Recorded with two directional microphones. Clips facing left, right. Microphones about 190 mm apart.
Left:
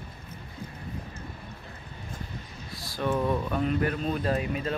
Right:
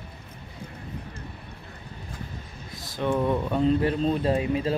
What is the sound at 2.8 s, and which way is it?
Speech, 20° right (ahead or behind).